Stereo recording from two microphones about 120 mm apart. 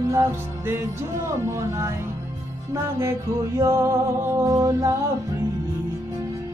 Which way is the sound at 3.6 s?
25° right (ahead or behind).